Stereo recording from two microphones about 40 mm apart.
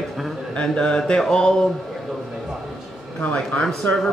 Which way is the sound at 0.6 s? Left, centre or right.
Left.